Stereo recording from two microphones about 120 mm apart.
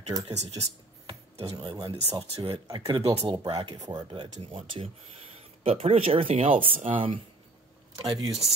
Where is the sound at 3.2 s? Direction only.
35° right (ahead or behind).